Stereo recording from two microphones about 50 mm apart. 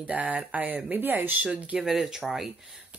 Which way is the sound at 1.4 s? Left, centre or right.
Right.